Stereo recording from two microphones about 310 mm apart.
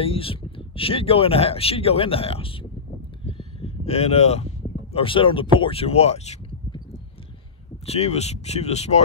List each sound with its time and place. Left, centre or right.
0.0 s speech: centre
3.3 s a sound: centre
4.9 s speech: centre
7.8 s speech: centre